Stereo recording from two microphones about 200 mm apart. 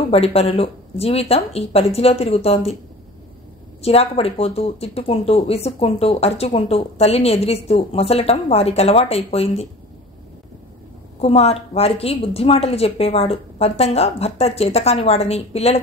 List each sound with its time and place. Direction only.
0.1 s speech: 30° left (ahead or behind)
3.8 s speech: 30° left (ahead or behind)
11.1 s speech: 30° left (ahead or behind)